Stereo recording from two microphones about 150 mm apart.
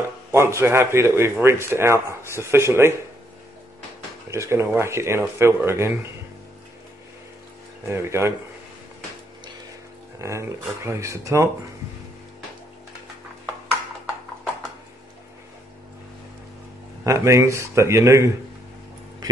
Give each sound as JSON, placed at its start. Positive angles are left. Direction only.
{"t": 0.3, "sound": "a man's voice", "side_deg": -20}
{"t": 4.3, "sound": "speech", "side_deg": -20}
{"t": 7.9, "sound": "speech", "side_deg": -15}
{"t": 10.2, "sound": "speech", "side_deg": -20}
{"t": 17.0, "sound": "speech", "side_deg": -20}